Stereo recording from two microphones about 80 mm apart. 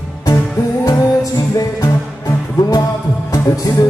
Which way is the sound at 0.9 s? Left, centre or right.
Left.